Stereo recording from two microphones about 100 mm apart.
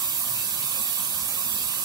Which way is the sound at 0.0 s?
40° right (ahead or behind).